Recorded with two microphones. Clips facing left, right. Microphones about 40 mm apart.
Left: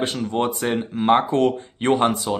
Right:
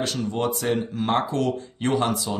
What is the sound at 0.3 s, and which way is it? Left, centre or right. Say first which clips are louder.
Speech: left 2 dB; left.